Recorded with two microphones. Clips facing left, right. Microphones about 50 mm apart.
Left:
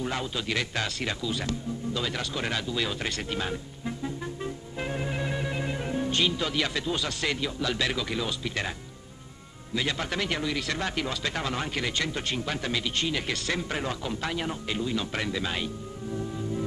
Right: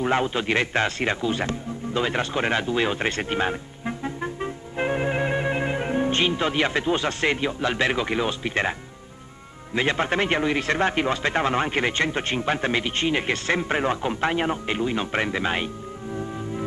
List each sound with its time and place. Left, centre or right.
0.0 s a man's voice: right
9.8 s speech: right